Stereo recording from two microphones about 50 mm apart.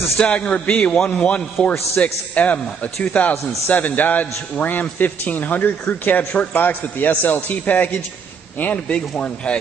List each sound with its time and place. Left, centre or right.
0.2 s a man's voice: left
8.9 s speech: centre